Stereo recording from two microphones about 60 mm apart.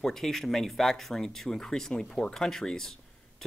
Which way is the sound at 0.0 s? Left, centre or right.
Centre.